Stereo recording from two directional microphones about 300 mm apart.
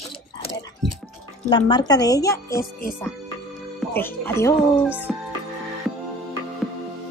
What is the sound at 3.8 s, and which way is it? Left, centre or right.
A woman's voice, centre.